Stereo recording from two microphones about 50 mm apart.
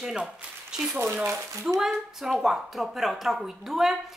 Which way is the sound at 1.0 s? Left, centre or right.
Right.